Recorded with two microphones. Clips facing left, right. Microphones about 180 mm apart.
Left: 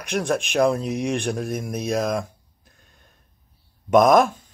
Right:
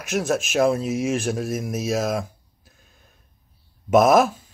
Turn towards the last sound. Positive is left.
turn(degrees=-5)  # may be behind; listen again after turning